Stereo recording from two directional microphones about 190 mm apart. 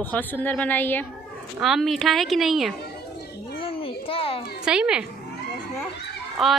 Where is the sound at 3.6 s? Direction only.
30° left (ahead or behind).